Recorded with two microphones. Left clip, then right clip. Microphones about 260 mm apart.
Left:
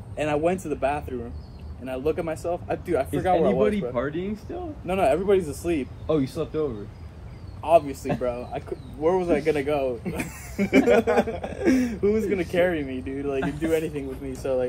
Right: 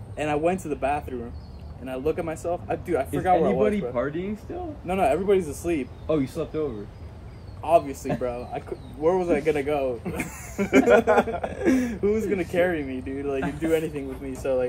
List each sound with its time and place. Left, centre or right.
0.1 s speech: centre
10.6 s speech: centre
11.5 s speech: centre